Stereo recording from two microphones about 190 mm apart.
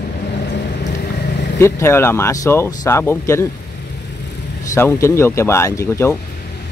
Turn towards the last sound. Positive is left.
turn(degrees=15)  # may be behind; listen again after turning